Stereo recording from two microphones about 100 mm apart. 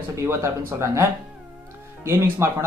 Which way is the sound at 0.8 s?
30° right (ahead or behind).